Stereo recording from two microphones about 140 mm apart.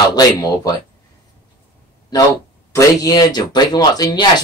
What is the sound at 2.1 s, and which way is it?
Speech, 30° left (ahead or behind).